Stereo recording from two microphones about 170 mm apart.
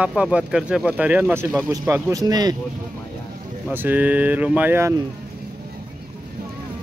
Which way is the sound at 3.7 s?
10° right (ahead or behind).